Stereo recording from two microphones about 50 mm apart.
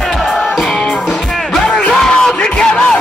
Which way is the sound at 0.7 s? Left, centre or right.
Centre.